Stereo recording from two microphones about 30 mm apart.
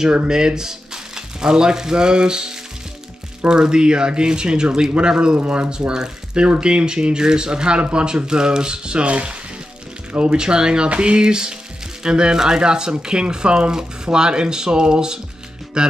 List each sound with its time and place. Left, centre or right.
0.3 s speech: right
5.4 s speech: right
5.7 s speech: right